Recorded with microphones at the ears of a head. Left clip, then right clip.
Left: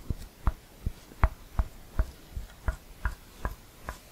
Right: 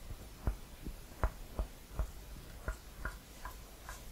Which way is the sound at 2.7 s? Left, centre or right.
Left.